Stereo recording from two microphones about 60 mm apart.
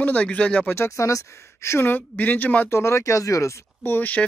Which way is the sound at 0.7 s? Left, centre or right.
Left.